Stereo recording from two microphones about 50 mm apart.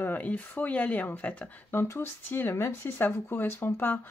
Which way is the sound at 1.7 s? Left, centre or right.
Left.